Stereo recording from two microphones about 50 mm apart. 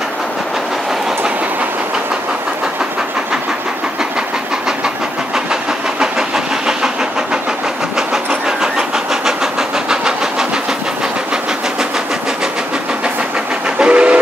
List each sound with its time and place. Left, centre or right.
5.3 s vehicle: centre
8.5 s vehicle: centre
13.7 s train: right